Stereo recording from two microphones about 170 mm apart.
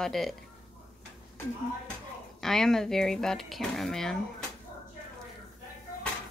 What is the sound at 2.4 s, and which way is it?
Speech, 5° left (ahead or behind).